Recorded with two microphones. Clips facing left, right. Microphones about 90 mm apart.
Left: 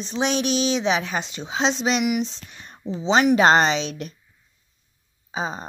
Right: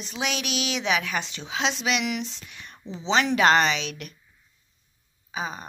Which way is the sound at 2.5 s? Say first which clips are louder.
Left 1 dB; 25° left (ahead or behind).